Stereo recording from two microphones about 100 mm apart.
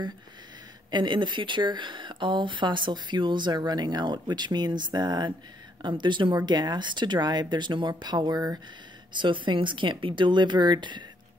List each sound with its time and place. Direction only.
0.9 s speech: 50° right (ahead or behind)
9.1 s speech: 55° right (ahead or behind)